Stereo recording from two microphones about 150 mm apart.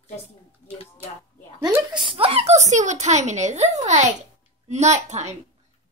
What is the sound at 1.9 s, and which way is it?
Speech, 35° right (ahead or behind).